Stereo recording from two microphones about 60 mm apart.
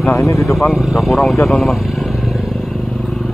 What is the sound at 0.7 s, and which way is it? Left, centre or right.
Speech, centre.